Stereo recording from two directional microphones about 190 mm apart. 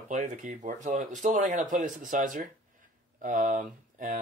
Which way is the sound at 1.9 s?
Centre (ahead or behind).